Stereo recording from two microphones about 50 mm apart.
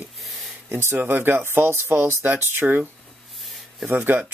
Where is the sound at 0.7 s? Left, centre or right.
Right.